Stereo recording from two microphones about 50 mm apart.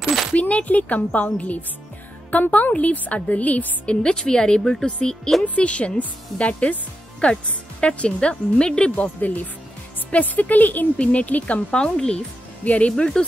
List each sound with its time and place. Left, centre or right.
0.3 s speech: left; by 4.8 s centre
5.4 s speech: left
8.9 s speech: left
11.7 s speech: centre
12.9 s speech: centre